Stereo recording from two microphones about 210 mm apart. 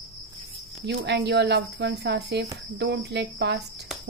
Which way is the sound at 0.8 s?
55° right (ahead or behind).